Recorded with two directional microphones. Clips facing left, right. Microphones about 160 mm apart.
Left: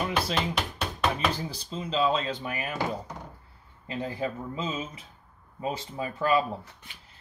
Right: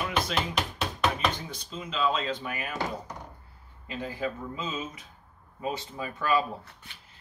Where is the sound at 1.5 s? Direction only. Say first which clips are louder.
Left 5 dB; 30° left (ahead or behind).